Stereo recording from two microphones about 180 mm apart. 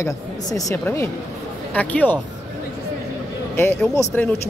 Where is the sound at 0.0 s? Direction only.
15° left (ahead or behind).